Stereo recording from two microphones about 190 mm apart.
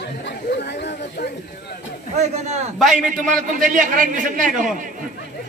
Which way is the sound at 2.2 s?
35° right (ahead or behind).